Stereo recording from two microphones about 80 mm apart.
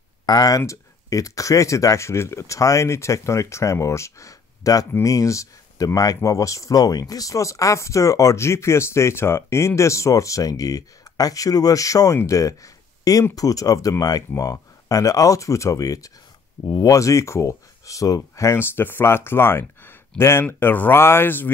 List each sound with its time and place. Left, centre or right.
0.3 s speech: left